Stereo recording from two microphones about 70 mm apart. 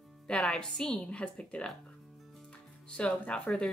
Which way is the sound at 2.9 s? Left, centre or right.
Centre.